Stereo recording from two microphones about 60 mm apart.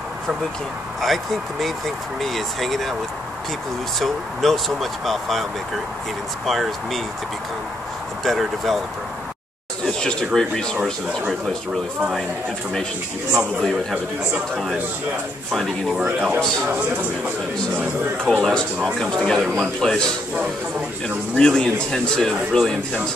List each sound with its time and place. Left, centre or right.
1.0 s speech: centre
4.0 s speech: centre
8.2 s speech: centre
9.8 s a man's voice: centre
14.5 s speech: centre
16.0 s speech: right
16.3 s a man's voice: centre
16.6 s speech: right
18.2 s a man's voice: centre
21.4 s a man's voice: centre